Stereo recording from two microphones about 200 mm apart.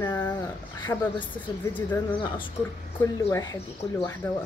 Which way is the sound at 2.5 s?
15° left (ahead or behind).